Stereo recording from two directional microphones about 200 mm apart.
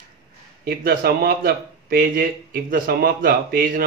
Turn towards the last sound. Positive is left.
turn(degrees=-45)  # may be behind; listen again after turning